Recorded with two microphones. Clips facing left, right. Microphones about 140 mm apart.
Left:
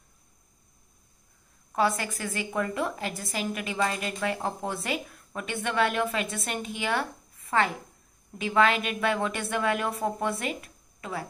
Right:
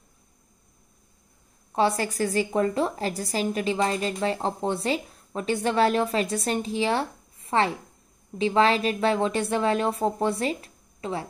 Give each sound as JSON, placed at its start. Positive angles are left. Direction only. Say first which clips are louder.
{"t": 1.7, "sound": "a woman's voice", "louder": "right 3 dB", "side_deg": -30}